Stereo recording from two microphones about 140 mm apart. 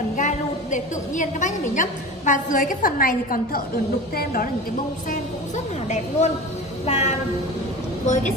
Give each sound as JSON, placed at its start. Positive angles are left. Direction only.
{"t": 0.1, "sound": "a woman's voice", "side_deg": 60}
{"t": 5.9, "sound": "a woman's voice", "side_deg": 55}